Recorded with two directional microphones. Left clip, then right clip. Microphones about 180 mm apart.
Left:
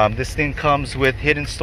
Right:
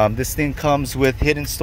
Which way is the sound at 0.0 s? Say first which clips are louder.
Even; 45° right (ahead or behind).